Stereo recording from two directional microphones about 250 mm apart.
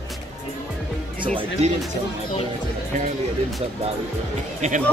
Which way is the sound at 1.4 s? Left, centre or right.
Right.